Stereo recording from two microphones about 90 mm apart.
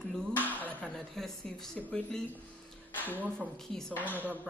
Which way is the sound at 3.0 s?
20° right (ahead or behind).